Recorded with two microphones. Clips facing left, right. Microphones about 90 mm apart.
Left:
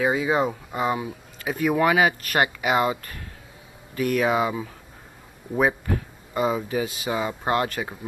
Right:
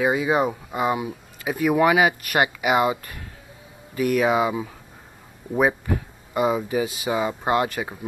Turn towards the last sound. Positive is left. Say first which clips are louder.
# right 2 dB
turn(degrees=-10)  # may be behind; listen again after turning